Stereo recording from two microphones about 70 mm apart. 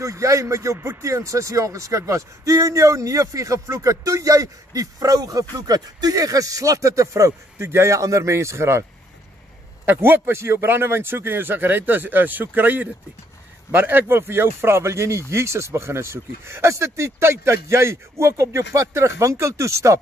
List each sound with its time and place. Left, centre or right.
0.0 s speech: right
9.8 s speech: right